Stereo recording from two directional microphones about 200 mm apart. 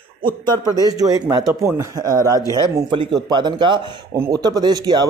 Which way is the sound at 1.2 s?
5° right (ahead or behind).